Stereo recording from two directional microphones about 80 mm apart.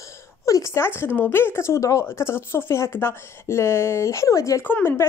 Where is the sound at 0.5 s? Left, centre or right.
Left.